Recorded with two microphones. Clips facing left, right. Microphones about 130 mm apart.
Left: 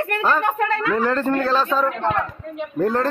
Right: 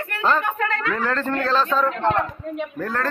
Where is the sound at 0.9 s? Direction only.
15° left (ahead or behind).